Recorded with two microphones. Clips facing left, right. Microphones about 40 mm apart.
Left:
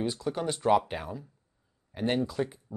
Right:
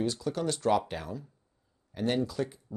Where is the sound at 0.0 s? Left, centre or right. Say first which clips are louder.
Even; centre.